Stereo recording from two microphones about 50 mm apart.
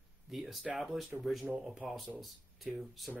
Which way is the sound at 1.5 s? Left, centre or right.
Centre.